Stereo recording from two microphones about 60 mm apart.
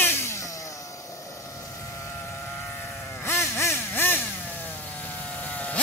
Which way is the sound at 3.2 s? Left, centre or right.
Left.